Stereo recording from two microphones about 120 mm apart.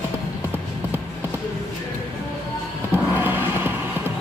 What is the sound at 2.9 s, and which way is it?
Music, 15° right (ahead or behind).